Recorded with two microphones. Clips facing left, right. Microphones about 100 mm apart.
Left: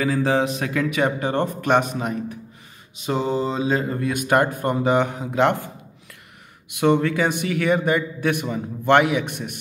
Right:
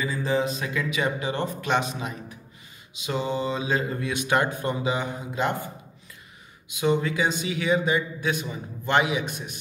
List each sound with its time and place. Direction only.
0.0 s a man's voice: 90° left; by 2.3 s 50° left (ahead or behind)
3.1 s speech: 40° left (ahead or behind); by 5.7 s 75° left (ahead or behind)
6.7 s a man's voice: 65° left (ahead or behind)